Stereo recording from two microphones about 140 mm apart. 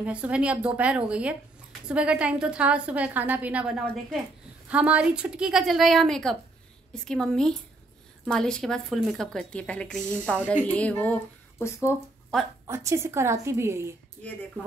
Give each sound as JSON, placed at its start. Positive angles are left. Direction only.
{"t": 0.0, "sound": "a woman's voice", "side_deg": -10}
{"t": 12.3, "sound": "a woman's voice", "side_deg": 5}
{"t": 12.6, "sound": "a woman's voice", "side_deg": -20}